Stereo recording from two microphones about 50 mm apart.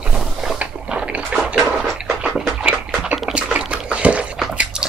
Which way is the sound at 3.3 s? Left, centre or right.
Right.